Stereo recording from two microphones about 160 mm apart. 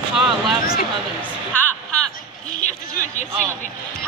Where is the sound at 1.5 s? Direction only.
10° left (ahead or behind).